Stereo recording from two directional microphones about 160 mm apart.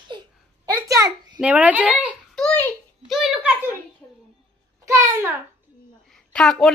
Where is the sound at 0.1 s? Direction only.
30° right (ahead or behind).